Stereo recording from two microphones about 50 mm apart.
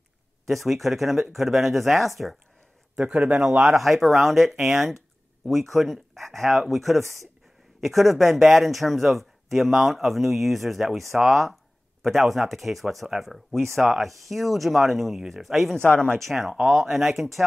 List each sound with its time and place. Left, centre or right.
0.5 s speech: centre
3.0 s speech: right
3.6 s speech: centre